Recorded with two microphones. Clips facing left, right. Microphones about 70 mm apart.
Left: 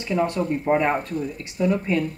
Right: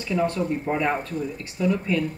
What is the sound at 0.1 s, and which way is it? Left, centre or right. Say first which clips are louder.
Speech: left 1 dB; left.